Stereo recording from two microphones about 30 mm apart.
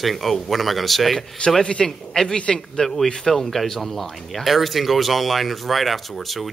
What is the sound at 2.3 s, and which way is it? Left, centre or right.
Speech, left.